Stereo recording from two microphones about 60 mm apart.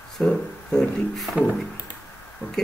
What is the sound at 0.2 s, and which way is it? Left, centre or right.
Speech, left.